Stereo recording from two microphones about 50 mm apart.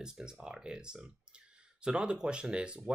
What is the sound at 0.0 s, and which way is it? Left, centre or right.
Speech, centre.